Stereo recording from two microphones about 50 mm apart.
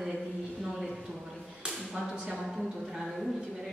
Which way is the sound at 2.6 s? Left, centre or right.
Centre.